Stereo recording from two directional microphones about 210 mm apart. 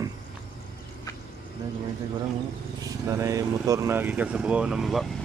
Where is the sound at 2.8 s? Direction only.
15° right (ahead or behind).